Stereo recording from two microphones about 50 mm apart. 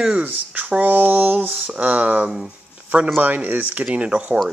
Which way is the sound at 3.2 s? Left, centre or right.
Right.